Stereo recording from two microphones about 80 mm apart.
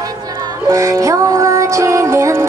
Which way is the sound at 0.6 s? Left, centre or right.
Right.